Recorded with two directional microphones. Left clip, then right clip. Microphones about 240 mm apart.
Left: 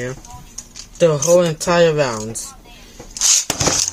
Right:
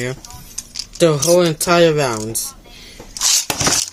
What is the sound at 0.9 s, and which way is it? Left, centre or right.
Speech, right.